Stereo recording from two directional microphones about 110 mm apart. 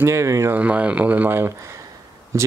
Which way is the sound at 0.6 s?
15° right (ahead or behind).